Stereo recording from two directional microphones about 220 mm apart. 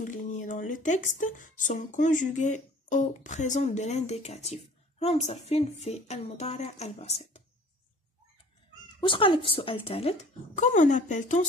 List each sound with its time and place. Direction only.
0.0 s speech: 35° left (ahead or behind)
9.0 s a woman's voice: 25° left (ahead or behind)